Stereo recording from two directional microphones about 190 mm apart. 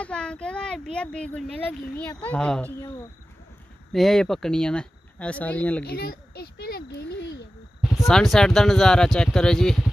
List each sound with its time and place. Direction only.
0.0 s speech: 5° left (ahead or behind)
3.9 s speech: centre (ahead or behind)
5.9 s a sound: 60° left (ahead or behind)
8.1 s speech: centre (ahead or behind)